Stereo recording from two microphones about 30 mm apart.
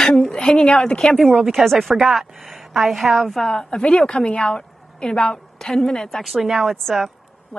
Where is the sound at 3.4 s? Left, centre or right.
Centre.